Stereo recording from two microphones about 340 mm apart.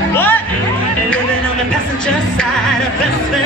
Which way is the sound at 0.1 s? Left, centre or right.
Centre.